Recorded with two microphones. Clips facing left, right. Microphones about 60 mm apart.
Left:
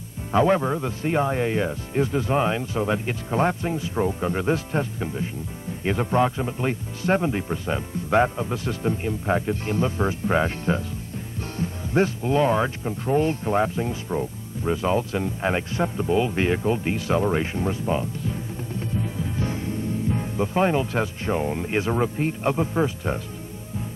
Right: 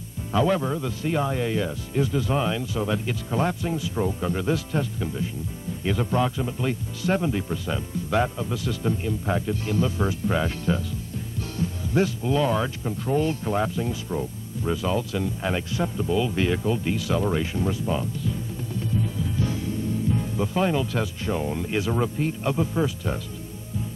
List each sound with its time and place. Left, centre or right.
0.3 s speech: left